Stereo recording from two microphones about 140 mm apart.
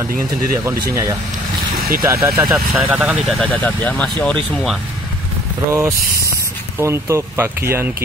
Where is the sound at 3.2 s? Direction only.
Centre (ahead or behind).